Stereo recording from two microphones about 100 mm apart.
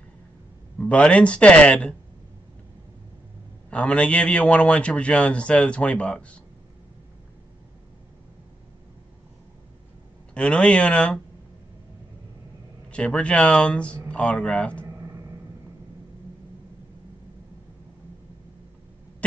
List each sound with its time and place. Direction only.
0.7 s a man's voice: 10° left (ahead or behind)
3.7 s a man's voice: 10° left (ahead or behind)
10.3 s a man's voice: 10° left (ahead or behind)
12.9 s a man's voice: 10° left (ahead or behind)
15.0 s a sound: 30° right (ahead or behind)